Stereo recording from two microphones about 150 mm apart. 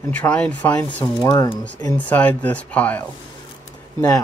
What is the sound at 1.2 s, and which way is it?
Speech, 30° left (ahead or behind).